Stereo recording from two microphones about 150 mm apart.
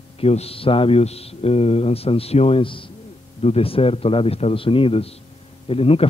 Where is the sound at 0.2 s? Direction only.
40° left (ahead or behind).